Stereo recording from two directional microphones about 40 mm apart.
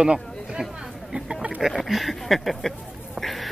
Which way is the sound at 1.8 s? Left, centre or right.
Centre.